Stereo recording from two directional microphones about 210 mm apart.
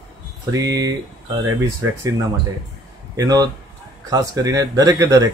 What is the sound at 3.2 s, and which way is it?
Speech, 15° right (ahead or behind).